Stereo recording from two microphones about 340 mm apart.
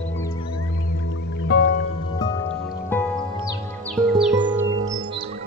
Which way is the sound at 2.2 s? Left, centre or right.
Centre.